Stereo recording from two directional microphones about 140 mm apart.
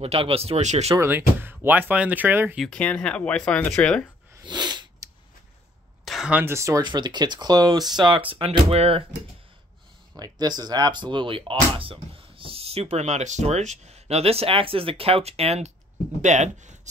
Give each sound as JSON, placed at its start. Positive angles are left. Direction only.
{"t": 0.0, "sound": "speech", "side_deg": -45}
{"t": 0.9, "sound": "speech", "side_deg": -15}
{"t": 2.6, "sound": "speech", "side_deg": 5}
{"t": 4.4, "sound": "sneeze", "side_deg": -30}
{"t": 6.0, "sound": "a sound", "side_deg": -5}
{"t": 6.4, "sound": "speech", "side_deg": -20}
{"t": 8.3, "sound": "speech", "side_deg": -45}
{"t": 10.1, "sound": "speech", "side_deg": -30}